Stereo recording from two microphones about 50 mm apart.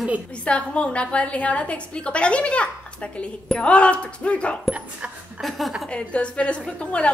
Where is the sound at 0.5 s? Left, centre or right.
Left.